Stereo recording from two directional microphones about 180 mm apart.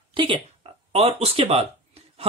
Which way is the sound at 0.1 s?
25° right (ahead or behind).